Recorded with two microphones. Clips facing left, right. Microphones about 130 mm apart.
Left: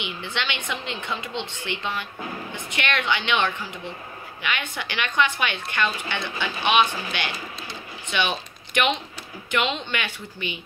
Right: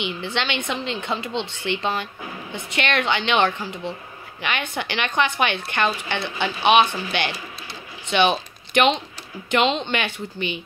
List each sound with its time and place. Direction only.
0.2 s speech: 35° right (ahead or behind)